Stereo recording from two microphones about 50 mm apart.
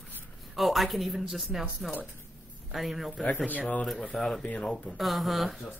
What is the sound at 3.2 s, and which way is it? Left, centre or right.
Speech, left.